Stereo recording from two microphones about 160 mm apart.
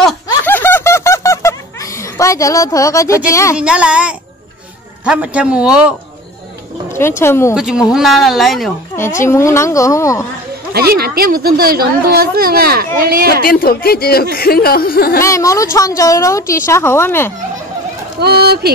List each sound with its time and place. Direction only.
0.5 s snicker: 10° left (ahead or behind)
3.3 s a woman's voice: 20° left (ahead or behind)
3.5 s a man's voice: 5° right (ahead or behind)
6.9 s speech: 15° left (ahead or behind)
7.5 s a man's voice: 5° right (ahead or behind)
8.9 s a woman's voice: 15° left (ahead or behind)
10.7 s speech: 75° right (ahead or behind)
13.4 s speech: 65° left (ahead or behind)
15.2 s a woman's voice: 20° left (ahead or behind)
18.2 s speech: 85° right